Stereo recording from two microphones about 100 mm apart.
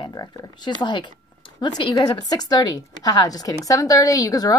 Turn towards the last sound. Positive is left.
turn(degrees=35)  # may be behind; listen again after turning